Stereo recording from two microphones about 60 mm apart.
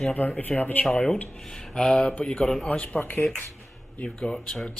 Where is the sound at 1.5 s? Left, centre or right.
Centre.